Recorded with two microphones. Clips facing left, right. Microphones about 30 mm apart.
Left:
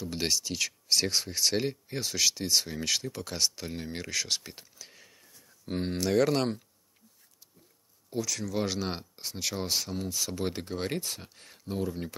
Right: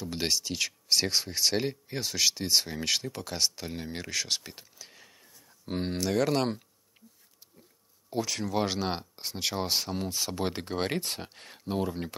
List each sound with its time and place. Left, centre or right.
0.0 s speech: centre
5.9 s speech: centre
8.1 s speech: right